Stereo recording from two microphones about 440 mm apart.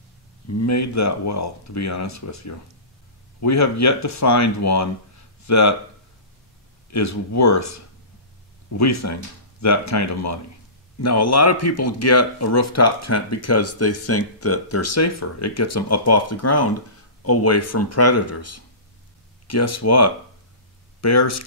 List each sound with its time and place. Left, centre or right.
0.5 s speech: left
6.9 s speech: left